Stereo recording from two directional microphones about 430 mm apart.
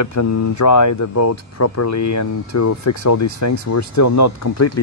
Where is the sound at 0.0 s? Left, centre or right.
Left.